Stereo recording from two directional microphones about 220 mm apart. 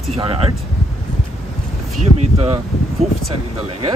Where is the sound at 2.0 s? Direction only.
30° right (ahead or behind).